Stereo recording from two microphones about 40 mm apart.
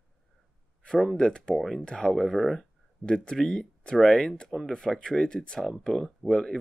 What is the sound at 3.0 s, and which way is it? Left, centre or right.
Speech, left.